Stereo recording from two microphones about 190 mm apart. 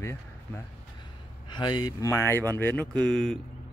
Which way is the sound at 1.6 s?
20° left (ahead or behind).